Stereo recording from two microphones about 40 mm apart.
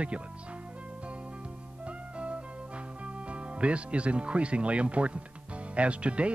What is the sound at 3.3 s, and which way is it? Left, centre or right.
Speech, right.